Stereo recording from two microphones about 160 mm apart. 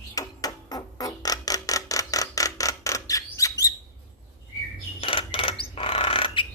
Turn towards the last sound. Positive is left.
turn(degrees=35)  # may be behind; listen again after turning